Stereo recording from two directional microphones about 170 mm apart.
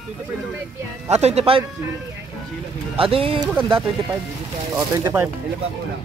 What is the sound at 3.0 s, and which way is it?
Speech, 35° right (ahead or behind).